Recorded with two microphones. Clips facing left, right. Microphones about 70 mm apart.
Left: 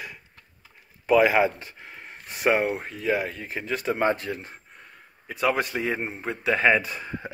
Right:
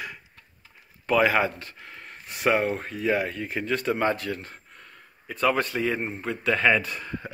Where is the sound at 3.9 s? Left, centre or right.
Left.